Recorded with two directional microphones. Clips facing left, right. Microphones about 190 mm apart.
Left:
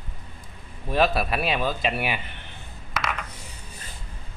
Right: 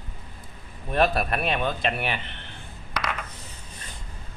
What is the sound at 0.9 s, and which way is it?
Speech, centre (ahead or behind).